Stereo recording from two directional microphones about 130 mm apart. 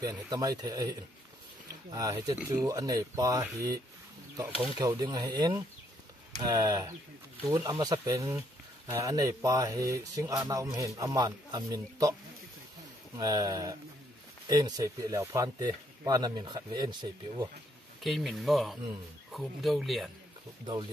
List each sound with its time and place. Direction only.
0.0 s speech: 30° right (ahead or behind)
13.2 s speech: 30° right (ahead or behind)
18.0 s speech: centre (ahead or behind)